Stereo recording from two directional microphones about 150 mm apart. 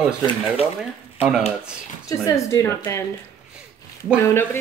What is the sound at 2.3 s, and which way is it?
Speech, 20° left (ahead or behind).